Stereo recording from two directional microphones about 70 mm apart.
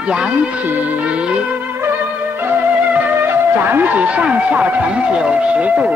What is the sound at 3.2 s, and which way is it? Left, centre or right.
Speech, right.